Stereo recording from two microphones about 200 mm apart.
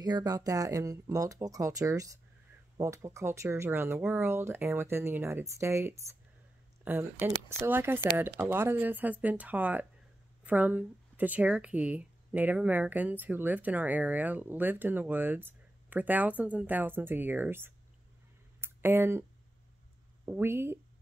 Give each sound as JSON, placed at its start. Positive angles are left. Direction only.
{"t": 0.0, "sound": "speech", "side_deg": -20}
{"t": 18.6, "sound": "a sound", "side_deg": -10}
{"t": 20.2, "sound": "speech", "side_deg": -10}